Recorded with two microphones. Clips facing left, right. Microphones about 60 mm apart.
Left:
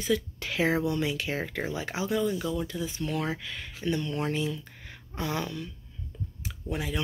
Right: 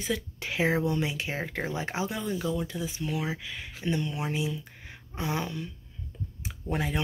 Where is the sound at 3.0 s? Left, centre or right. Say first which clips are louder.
Left 2 dB; centre.